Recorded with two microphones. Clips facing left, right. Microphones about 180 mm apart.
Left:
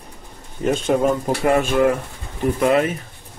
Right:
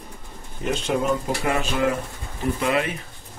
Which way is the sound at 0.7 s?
50° left (ahead or behind).